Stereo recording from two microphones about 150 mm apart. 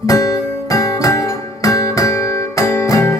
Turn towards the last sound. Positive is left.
turn(degrees=20)  # may be behind; listen again after turning